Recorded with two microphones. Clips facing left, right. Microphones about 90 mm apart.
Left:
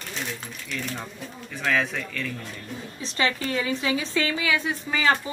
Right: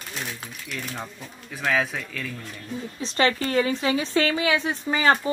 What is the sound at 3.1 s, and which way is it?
A woman's voice, 40° right (ahead or behind).